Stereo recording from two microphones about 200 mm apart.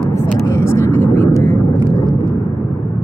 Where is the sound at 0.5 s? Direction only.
15° left (ahead or behind).